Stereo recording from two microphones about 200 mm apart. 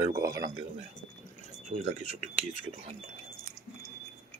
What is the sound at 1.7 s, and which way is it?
Speech, 30° right (ahead or behind).